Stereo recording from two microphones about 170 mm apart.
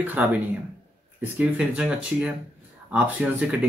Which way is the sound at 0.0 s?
10° right (ahead or behind).